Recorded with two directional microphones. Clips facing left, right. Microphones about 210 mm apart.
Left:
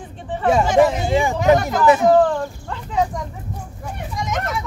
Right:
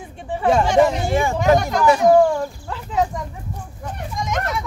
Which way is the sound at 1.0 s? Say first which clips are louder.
Left 1 dB; 15° left (ahead or behind).